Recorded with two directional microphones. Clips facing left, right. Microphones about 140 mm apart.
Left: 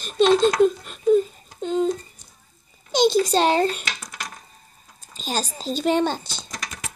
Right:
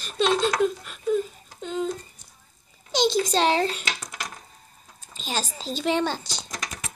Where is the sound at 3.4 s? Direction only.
50° left (ahead or behind).